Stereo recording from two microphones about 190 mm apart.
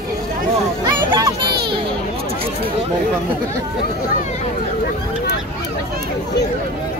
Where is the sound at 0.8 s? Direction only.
20° right (ahead or behind).